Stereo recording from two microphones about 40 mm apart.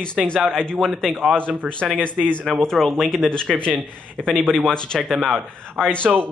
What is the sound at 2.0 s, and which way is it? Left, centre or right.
Speech, right.